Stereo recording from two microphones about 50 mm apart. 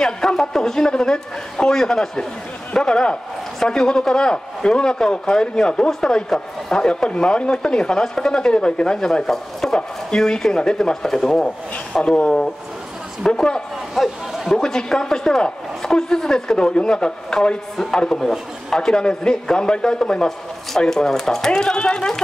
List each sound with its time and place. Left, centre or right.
0.0 s a woman's voice: centre
11.4 s a woman's voice: left
13.9 s speech: centre
14.6 s a woman's voice: centre